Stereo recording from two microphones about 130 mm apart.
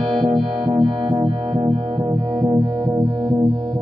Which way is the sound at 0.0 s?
40° right (ahead or behind).